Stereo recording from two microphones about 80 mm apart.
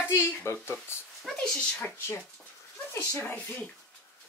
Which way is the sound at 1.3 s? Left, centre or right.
Centre.